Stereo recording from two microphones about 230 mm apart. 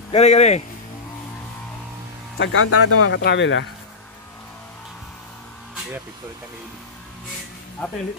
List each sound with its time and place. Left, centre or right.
0.1 s speech: left
2.3 s speech: left
3.2 s speech: left